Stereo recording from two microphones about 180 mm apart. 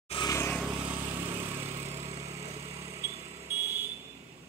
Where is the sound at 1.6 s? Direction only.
35° right (ahead or behind).